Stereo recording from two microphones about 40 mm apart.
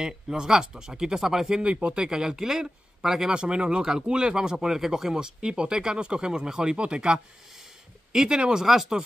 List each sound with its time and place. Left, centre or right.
0.0 s speech: centre
1.6 s speech: right; by 3.3 s centre
3.3 s speech: right
8.6 s speech: centre